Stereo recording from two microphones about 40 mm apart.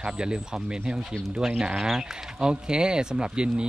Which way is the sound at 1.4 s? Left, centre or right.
Centre.